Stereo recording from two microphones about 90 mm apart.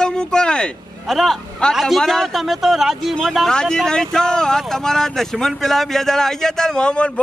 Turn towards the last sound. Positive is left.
turn(degrees=10)  # may be behind; listen again after turning